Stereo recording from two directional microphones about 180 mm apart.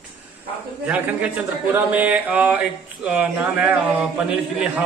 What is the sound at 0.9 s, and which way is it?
Speech, 10° right (ahead or behind).